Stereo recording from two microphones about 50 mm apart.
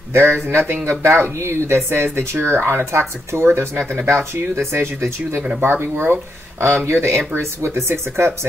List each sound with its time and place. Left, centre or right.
0.1 s speech: right
2.1 s speech: right